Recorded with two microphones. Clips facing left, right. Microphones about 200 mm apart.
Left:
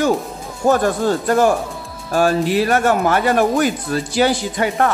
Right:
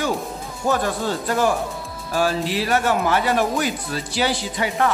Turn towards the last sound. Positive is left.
turn(degrees=50)  # may be behind; listen again after turning